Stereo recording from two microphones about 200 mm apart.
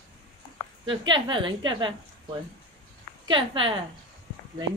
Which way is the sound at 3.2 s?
25° right (ahead or behind).